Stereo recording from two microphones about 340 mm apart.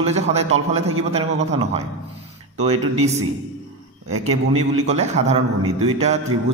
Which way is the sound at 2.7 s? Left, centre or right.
Right.